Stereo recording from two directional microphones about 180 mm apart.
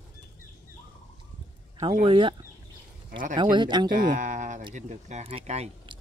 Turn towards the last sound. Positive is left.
turn(degrees=-35)  # may be behind; listen again after turning